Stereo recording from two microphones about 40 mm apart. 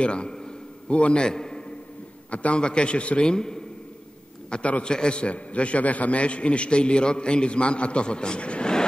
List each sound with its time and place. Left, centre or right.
0.0 s a man's voice: left
2.3 s a man's voice: left
4.5 s a man's voice: left
4.8 s a man's voice: left